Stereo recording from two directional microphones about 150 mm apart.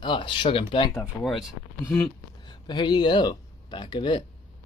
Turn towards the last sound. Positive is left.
turn(degrees=30)  # may be behind; listen again after turning